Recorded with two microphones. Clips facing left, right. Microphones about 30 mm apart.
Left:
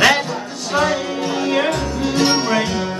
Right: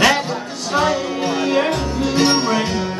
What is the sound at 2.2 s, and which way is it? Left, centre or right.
Music, centre.